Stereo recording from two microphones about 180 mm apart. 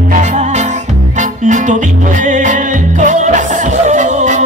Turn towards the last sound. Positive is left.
turn(degrees=-40)  # may be behind; listen again after turning